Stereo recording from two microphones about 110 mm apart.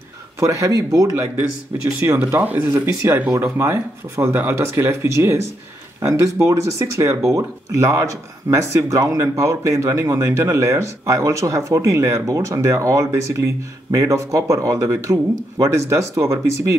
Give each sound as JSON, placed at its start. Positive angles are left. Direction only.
{"t": 0.4, "sound": "speech", "side_deg": -30}
{"t": 2.2, "sound": "speech", "side_deg": -15}
{"t": 3.2, "sound": "speech", "side_deg": -10}